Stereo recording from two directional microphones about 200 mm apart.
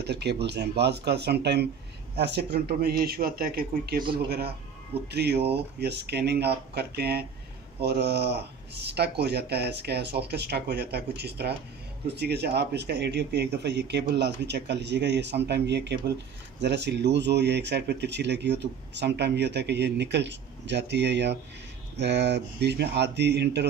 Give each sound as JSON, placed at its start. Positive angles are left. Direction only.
{"t": 0.0, "sound": "speech", "side_deg": -55}
{"t": 5.1, "sound": "speech", "side_deg": -55}